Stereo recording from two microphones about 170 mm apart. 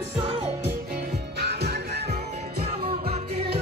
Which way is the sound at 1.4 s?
75° right (ahead or behind).